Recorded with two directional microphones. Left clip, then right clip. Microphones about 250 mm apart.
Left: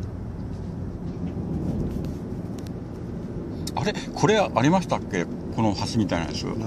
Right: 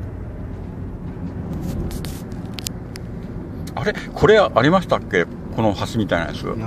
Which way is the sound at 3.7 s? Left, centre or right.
Centre.